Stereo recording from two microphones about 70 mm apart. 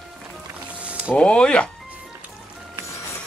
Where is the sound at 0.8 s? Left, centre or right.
Centre.